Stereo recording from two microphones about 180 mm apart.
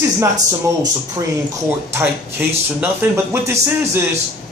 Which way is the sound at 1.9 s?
10° right (ahead or behind).